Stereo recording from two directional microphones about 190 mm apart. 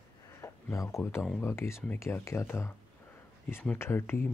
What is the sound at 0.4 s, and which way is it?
Speech, 15° left (ahead or behind).